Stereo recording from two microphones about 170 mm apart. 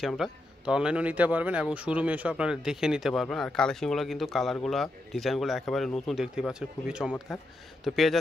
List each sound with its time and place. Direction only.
0.0 s a man's voice: centre (ahead or behind)